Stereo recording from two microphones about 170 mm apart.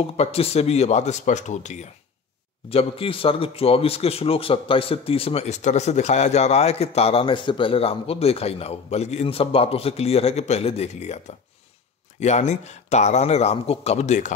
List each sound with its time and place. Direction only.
0.0 s a man's voice: 35° left (ahead or behind)